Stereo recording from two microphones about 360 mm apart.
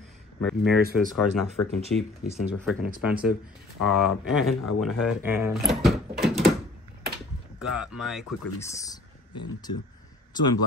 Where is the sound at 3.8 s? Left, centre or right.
Centre.